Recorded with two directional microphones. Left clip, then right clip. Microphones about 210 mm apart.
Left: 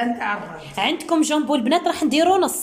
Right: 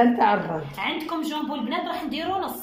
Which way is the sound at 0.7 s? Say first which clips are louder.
Left 11 dB; 50° left (ahead or behind).